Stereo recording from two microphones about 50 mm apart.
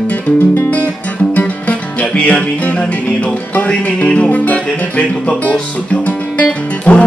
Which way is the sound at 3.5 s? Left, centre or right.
Left.